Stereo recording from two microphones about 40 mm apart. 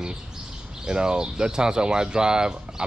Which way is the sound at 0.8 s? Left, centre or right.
Centre.